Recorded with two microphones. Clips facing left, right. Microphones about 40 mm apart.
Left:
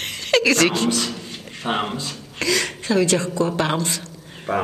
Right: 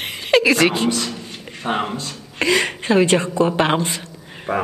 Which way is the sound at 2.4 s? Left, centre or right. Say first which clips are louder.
Right 4 dB; right.